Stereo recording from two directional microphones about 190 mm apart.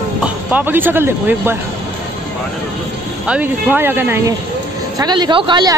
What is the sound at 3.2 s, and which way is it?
Speech, 10° right (ahead or behind).